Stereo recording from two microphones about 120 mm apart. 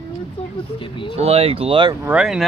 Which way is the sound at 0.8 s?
45° left (ahead or behind).